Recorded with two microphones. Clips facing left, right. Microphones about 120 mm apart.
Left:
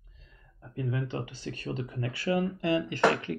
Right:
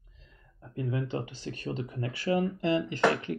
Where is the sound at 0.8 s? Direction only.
35° right (ahead or behind).